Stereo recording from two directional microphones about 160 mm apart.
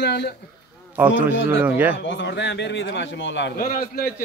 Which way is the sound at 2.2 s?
90° left.